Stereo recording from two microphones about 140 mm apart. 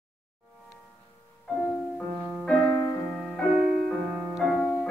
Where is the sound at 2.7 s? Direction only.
20° left (ahead or behind).